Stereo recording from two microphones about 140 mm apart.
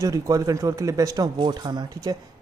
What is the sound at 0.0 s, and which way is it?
A man's voice, 25° right (ahead or behind).